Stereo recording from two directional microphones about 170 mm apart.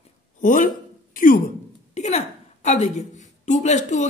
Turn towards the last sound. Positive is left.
turn(degrees=45)  # may be behind; listen again after turning